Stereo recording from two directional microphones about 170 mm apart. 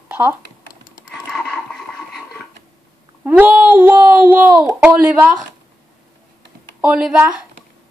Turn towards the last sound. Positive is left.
turn(degrees=-5)  # may be behind; listen again after turning